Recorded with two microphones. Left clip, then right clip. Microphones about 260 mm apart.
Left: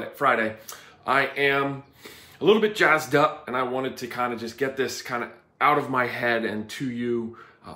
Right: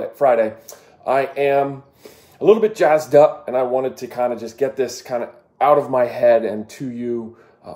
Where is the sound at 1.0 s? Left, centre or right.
Left.